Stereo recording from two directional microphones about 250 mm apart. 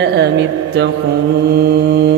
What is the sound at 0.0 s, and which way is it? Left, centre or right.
Mantra, right.